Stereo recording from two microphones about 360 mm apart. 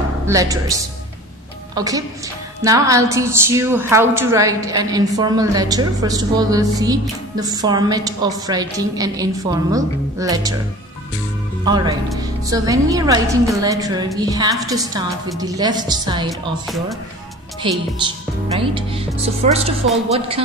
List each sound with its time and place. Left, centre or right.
0.3 s a woman's voice: centre
1.8 s a woman's voice: centre
11.6 s a woman's voice: centre
17.6 s a woman's voice: centre